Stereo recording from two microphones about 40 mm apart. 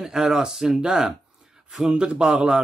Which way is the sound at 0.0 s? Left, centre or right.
Centre.